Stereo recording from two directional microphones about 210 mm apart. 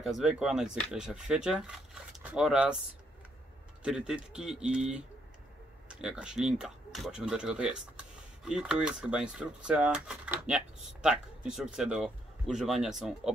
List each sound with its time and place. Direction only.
0.0 s speech: centre (ahead or behind)
3.8 s speech: 5° right (ahead or behind)